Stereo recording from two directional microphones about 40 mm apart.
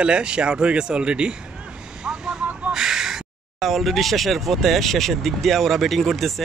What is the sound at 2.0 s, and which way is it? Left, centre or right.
Vehicle, centre.